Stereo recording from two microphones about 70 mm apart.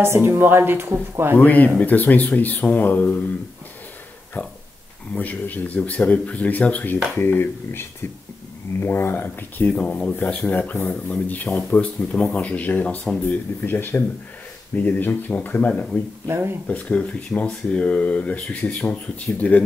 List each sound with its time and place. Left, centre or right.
0.0 s speech: right
1.4 s speech: left
4.4 s speech: left
7.2 s speech: left
15.7 s speech: centre
16.3 s speech: right
16.6 s speech: centre